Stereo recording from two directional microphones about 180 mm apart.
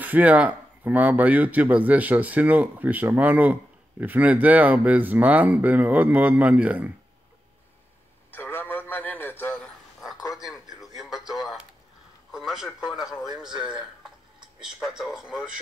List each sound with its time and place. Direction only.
0.0 s speech: 10° right (ahead or behind)
8.3 s a sound: 10° left (ahead or behind)
11.0 s radio: centre (ahead or behind)
12.3 s a man's voice: centre (ahead or behind)